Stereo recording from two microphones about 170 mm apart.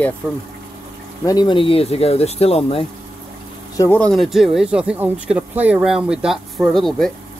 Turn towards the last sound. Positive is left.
turn(degrees=0)  # may be behind; listen again after turning